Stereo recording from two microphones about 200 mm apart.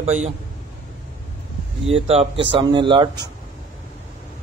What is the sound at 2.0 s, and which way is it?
Speech, 30° right (ahead or behind).